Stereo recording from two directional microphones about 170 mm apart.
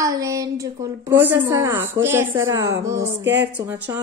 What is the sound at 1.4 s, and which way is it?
A woman's voice, 25° right (ahead or behind).